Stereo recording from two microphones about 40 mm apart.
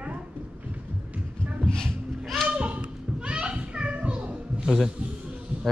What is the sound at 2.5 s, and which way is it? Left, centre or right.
Children playing, right.